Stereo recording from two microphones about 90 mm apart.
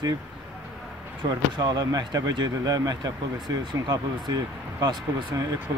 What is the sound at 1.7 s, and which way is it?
Speech, 45° right (ahead or behind).